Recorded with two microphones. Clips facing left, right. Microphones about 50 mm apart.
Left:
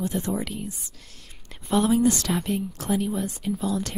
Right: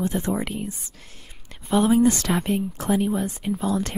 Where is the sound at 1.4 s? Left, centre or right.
Centre.